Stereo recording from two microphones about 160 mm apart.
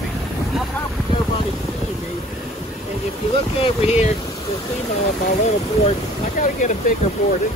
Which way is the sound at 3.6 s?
40° left (ahead or behind).